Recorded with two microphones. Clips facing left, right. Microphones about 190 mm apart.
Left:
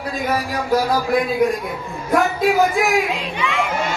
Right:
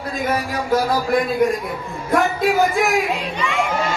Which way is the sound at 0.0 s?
Centre (ahead or behind).